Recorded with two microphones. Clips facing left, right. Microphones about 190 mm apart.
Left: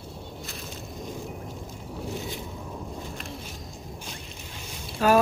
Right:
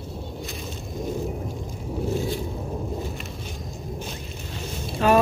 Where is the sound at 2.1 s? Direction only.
15° left (ahead or behind).